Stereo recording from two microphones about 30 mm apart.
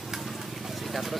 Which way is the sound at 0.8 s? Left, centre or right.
Centre.